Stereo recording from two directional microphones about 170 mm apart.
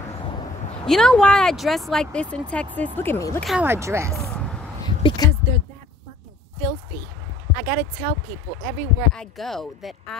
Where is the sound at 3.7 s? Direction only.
15° right (ahead or behind).